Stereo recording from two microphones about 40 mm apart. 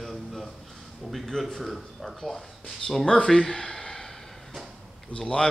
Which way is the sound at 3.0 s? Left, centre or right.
Left.